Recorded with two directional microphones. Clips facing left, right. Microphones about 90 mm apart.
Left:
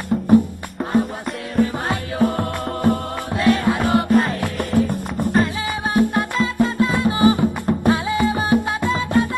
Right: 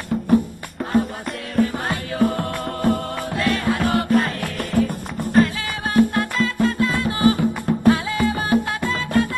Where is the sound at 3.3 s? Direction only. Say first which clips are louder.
Left 4 dB; centre (ahead or behind).